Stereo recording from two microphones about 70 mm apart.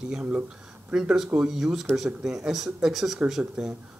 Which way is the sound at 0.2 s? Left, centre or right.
Centre.